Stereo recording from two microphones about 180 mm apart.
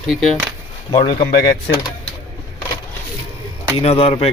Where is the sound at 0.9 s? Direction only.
30° left (ahead or behind).